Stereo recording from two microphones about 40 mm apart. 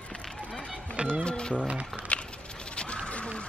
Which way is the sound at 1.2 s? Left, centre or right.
Left.